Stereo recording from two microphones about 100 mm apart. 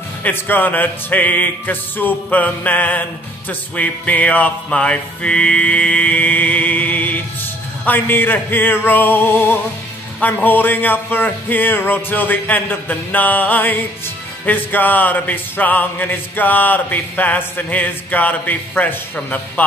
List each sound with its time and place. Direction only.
0.2 s music: 20° left (ahead or behind)